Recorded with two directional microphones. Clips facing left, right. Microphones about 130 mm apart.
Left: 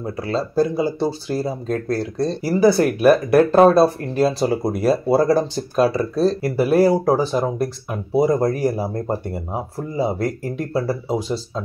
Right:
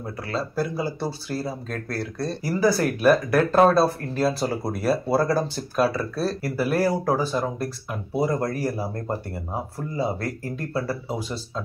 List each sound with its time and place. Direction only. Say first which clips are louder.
0.0 s speech: left 6 dB; 25° left (ahead or behind)